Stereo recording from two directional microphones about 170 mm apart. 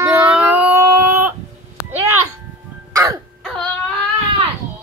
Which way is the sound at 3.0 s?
15° right (ahead or behind).